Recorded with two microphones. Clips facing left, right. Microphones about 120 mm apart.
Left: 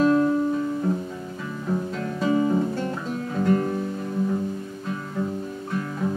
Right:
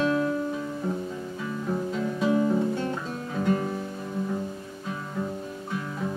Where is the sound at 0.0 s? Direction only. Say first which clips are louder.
Left 6 dB; centre (ahead or behind).